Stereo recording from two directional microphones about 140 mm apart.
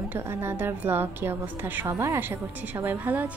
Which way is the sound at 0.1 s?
15° right (ahead or behind).